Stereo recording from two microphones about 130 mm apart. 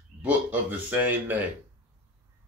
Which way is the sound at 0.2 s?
10° right (ahead or behind).